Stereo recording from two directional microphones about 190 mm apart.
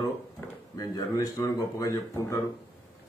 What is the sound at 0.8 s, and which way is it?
Speech, 20° left (ahead or behind).